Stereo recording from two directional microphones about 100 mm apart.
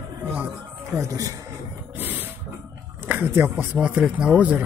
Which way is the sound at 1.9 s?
20° right (ahead or behind).